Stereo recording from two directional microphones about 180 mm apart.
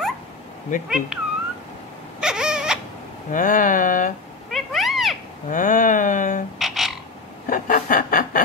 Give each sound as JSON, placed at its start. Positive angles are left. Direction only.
{"t": 0.8, "sound": "speech", "side_deg": -5}
{"t": 2.1, "sound": "a sound", "side_deg": -5}
{"t": 3.3, "sound": "speech", "side_deg": 50}
{"t": 4.5, "sound": "cat", "side_deg": 0}
{"t": 5.5, "sound": "a sound", "side_deg": 45}
{"t": 6.6, "sound": "frog", "side_deg": 0}
{"t": 7.4, "sound": "snicker", "side_deg": 50}